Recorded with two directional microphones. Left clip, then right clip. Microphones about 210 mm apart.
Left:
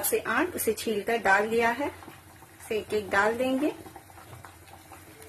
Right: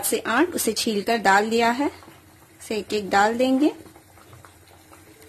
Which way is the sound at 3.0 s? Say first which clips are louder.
Right 6 dB; 60° right (ahead or behind).